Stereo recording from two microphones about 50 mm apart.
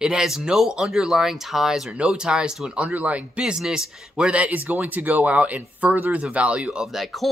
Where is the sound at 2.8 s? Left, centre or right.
Right.